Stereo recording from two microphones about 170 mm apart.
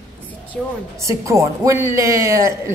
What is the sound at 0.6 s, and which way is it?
Speech, 5° left (ahead or behind).